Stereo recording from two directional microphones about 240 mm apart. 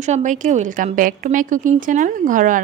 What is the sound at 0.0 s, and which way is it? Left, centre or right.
A woman's voice, right.